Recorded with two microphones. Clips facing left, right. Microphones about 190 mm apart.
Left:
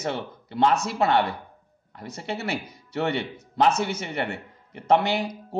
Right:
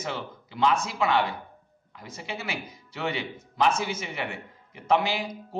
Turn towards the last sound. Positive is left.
turn(degrees=65)  # may be behind; listen again after turning